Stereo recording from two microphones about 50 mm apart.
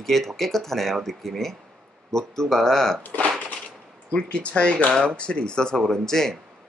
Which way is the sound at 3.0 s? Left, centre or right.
Left.